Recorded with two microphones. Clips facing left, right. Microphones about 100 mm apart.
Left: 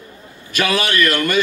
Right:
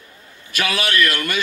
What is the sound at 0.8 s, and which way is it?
Speech, 25° left (ahead or behind).